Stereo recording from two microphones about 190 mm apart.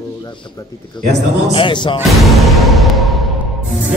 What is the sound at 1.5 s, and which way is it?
Speech, 25° left (ahead or behind).